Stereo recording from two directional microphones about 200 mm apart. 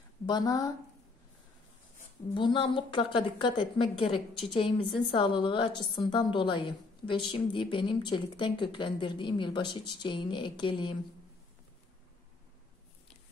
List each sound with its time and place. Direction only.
0.3 s a woman's voice: 20° left (ahead or behind)
2.3 s a woman's voice: 25° left (ahead or behind)